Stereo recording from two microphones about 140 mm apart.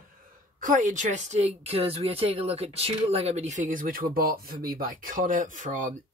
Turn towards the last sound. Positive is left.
turn(degrees=-65)  # may be behind; listen again after turning